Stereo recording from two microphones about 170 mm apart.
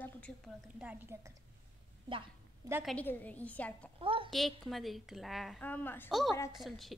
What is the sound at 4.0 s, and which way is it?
Speech, 30° right (ahead or behind).